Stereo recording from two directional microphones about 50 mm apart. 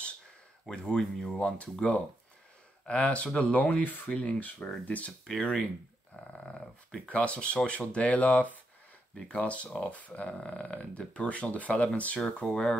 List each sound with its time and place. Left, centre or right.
0.7 s speech: centre
1.4 s speech: left
7.1 s speech: left